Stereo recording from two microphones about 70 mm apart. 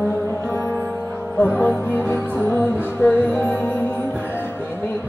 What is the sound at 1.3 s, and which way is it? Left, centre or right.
Music, left.